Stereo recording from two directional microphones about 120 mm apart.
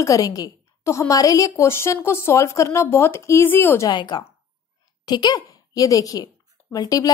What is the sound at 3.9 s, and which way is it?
A woman's voice, 40° left (ahead or behind).